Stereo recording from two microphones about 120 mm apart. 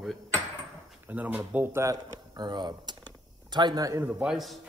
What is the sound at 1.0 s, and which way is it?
Speech, 15° right (ahead or behind).